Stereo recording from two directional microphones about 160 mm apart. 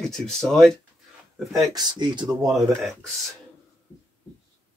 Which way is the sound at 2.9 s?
Centre (ahead or behind).